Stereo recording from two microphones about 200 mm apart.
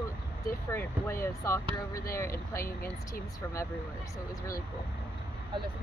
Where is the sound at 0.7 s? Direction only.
15° left (ahead or behind).